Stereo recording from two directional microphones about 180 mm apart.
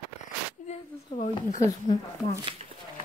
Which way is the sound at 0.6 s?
40° left (ahead or behind).